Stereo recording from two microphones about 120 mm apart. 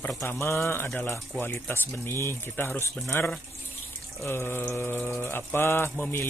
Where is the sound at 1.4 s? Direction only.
15° left (ahead or behind).